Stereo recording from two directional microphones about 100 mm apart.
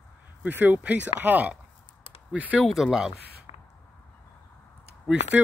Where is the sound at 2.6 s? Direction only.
Centre (ahead or behind).